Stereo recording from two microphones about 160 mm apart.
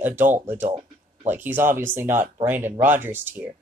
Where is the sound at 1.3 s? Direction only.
10° right (ahead or behind).